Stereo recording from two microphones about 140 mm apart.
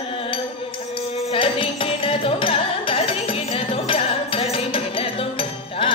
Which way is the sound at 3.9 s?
45° left (ahead or behind).